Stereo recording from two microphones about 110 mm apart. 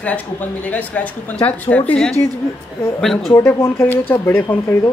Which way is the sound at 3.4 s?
25° left (ahead or behind).